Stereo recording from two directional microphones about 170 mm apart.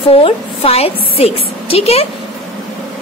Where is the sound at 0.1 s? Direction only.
35° left (ahead or behind).